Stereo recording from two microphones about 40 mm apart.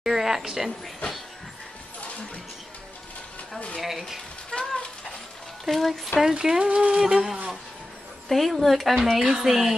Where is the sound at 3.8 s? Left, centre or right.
Centre.